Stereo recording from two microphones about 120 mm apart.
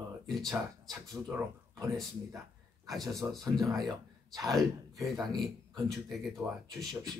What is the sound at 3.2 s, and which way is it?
Speech, 30° right (ahead or behind).